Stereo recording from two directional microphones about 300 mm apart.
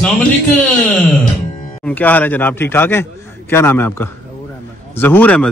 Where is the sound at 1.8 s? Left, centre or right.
Centre.